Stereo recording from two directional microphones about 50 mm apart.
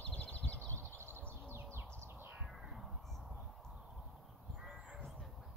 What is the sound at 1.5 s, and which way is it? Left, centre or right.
Bird, right.